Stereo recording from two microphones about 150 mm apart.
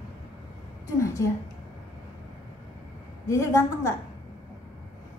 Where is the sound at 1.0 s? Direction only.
20° left (ahead or behind).